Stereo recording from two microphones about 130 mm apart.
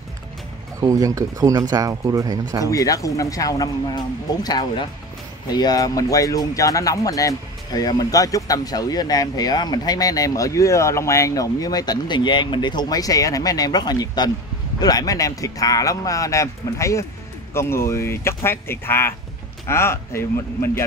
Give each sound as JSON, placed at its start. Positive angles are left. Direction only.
{"t": 0.7, "sound": "speech", "side_deg": -25}
{"t": 2.6, "sound": "speech", "side_deg": 25}